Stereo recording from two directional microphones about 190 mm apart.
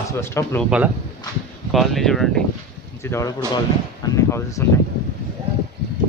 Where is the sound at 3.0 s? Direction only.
15° left (ahead or behind).